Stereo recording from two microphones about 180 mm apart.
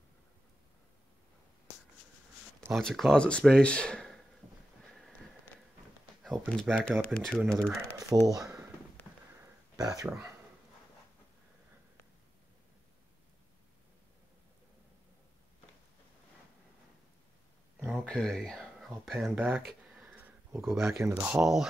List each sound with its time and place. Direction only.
2.7 s speech: centre (ahead or behind)
6.2 s speech: centre (ahead or behind)
8.1 s speech: 10° right (ahead or behind)
9.8 s speech: 20° right (ahead or behind)
17.7 s a sound: centre (ahead or behind)
19.0 s speech: centre (ahead or behind)
19.9 s a sound: 10° right (ahead or behind)
20.6 s speech: centre (ahead or behind)